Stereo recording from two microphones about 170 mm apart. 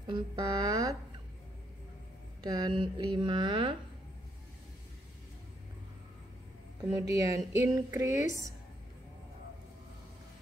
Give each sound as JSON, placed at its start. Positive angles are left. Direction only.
{"t": 0.0, "sound": "speech", "side_deg": -25}
{"t": 2.4, "sound": "speech", "side_deg": -25}
{"t": 6.9, "sound": "speech", "side_deg": -20}